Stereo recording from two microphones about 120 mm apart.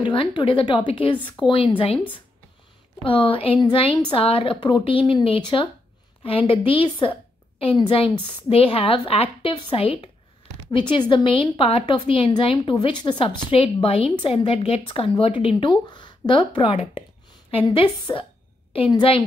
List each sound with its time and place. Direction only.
0.0 s a woman's voice: 45° left (ahead or behind)
3.0 s a woman's voice: 45° left (ahead or behind)
10.7 s speech: 40° left (ahead or behind)
11.2 s a woman's voice: 50° left (ahead or behind)
18.1 s speech: 30° left (ahead or behind)
18.9 s speech: 45° left (ahead or behind)